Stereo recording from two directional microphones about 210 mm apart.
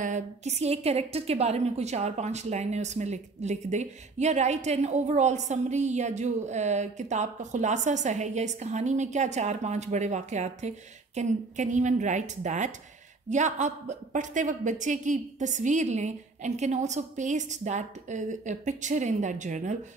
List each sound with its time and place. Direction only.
0.0 s a woman's voice: 35° right (ahead or behind)